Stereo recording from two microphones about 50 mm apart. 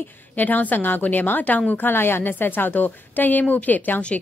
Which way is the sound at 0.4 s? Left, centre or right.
Left.